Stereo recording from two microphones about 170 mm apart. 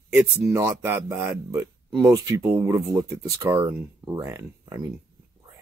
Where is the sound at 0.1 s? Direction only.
15° right (ahead or behind).